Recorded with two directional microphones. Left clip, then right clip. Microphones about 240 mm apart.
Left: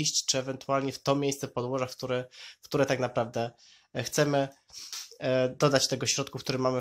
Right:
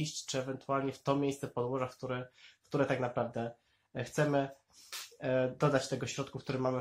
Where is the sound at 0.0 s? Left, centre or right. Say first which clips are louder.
Left 9 dB; left.